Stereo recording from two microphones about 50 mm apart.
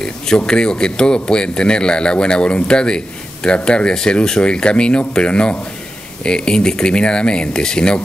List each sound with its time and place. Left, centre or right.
0.4 s a man's voice: centre